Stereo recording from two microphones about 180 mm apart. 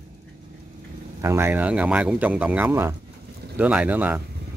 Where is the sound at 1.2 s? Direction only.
15° right (ahead or behind).